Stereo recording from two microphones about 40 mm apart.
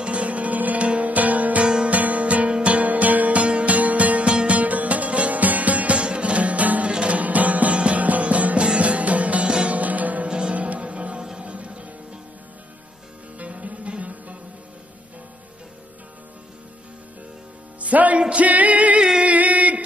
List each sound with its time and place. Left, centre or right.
0.0 s music: right
4.6 s music: right
6.9 s music: right
7.2 s music: right
13.4 s music: right
17.8 s music: right
19.2 s a sound: right